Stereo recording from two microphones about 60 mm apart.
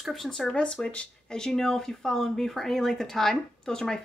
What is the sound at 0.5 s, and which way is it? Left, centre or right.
Speech, centre.